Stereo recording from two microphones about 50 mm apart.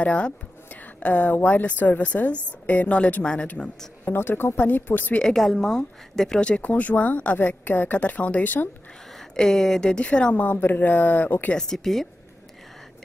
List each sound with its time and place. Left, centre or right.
0.0 s a woman's voice: left
4.0 s a woman's voice: left
5.2 s speech: centre
6.4 s a woman's voice: left
9.3 s speech: centre
10.3 s a woman's voice: left
11.5 s speech: centre